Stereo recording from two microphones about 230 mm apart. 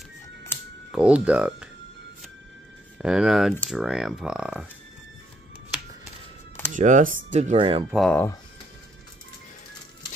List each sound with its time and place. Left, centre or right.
0.9 s speech: centre
3.0 s speech: centre
6.7 s speech: right
7.9 s speech: centre